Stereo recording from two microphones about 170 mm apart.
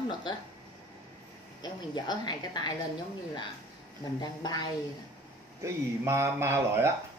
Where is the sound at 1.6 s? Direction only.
25° left (ahead or behind).